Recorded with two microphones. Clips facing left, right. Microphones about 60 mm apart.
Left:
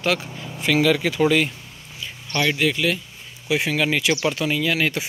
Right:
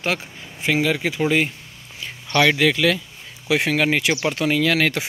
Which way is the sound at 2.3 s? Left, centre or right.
Right.